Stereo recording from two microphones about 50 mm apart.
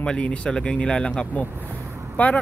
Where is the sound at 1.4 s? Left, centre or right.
Right.